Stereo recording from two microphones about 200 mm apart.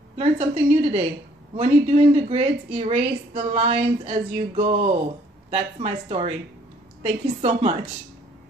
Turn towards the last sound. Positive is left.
turn(degrees=-30)  # may be behind; listen again after turning